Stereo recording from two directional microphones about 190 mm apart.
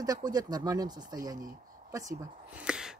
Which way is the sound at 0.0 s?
20° right (ahead or behind).